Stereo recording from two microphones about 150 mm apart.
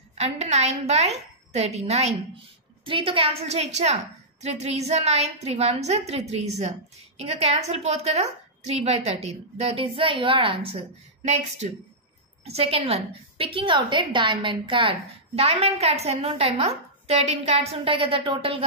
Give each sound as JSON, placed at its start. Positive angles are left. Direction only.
{"t": 0.2, "sound": "a woman's voice", "side_deg": -45}